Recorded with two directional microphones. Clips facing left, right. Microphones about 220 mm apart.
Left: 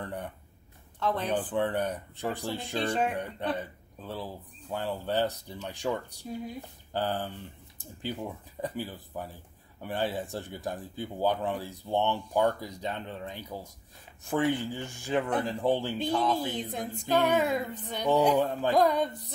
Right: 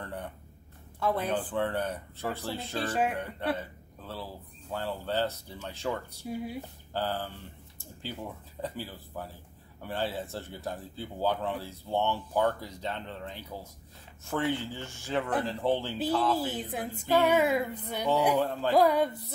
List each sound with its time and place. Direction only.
0.0 s a sound: 15° left (ahead or behind)
0.9 s speech: 10° right (ahead or behind)
1.5 s speech: 15° left (ahead or behind)
2.7 s speech: 5° right (ahead or behind)
3.5 s speech: 15° left (ahead or behind)
6.2 s speech: 10° right (ahead or behind)
6.9 s speech: 15° left (ahead or behind)
16.3 s speech: 5° right (ahead or behind)
18.4 s speech: 15° left (ahead or behind)
18.7 s speech: 10° right (ahead or behind)